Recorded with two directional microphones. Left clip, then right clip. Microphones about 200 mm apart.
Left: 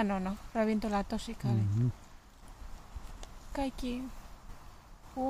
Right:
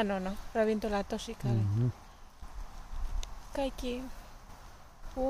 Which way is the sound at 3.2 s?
10° right (ahead or behind).